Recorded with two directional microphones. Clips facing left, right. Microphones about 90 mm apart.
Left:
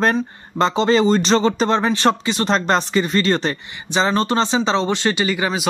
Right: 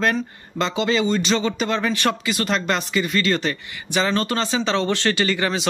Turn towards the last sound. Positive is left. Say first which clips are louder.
# left 1 dB
turn(degrees=15)  # may be behind; listen again after turning